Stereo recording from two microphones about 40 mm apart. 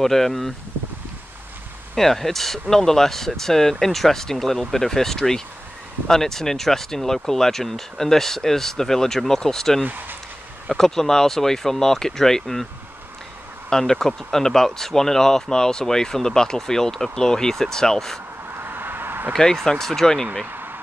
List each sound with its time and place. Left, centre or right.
0.0 s speech: centre
2.0 s speech: centre
9.8 s speech: right
10.7 s speech: centre
13.7 s speech: centre
18.6 s a sound: right
19.3 s speech: centre
20.4 s a sound: right